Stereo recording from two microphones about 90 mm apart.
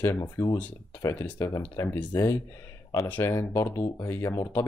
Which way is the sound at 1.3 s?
35° left (ahead or behind).